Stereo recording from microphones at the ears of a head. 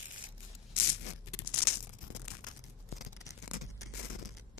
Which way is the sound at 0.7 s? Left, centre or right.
Left.